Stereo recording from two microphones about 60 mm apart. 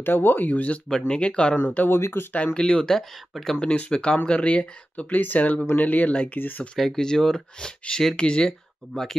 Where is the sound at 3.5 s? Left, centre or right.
Left.